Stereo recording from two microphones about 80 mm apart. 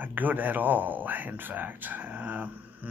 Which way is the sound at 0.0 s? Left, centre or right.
Right.